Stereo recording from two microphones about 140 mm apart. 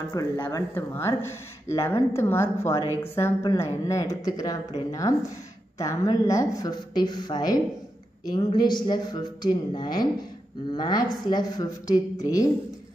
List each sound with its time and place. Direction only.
0.1 s a woman's voice: 25° left (ahead or behind)